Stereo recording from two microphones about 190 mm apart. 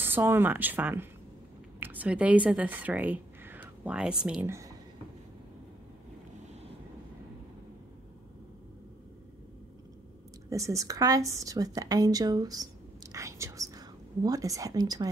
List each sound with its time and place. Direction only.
0.0 s speech: 10° right (ahead or behind)
10.5 s a woman's voice: 15° right (ahead or behind)